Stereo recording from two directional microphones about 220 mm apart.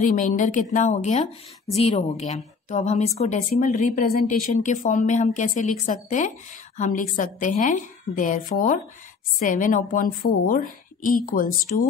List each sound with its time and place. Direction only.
0.0 s a woman's voice: 35° left (ahead or behind)